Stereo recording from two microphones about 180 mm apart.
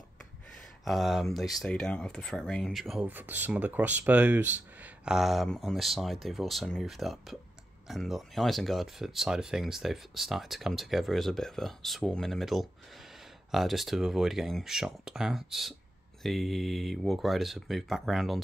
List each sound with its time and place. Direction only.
0.8 s speech: centre (ahead or behind)